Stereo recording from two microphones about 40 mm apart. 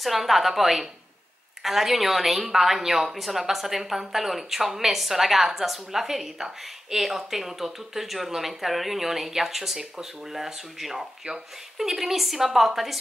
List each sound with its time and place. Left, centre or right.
0.0 s a woman's voice: centre
11.2 s speech: centre
11.9 s a woman's voice: centre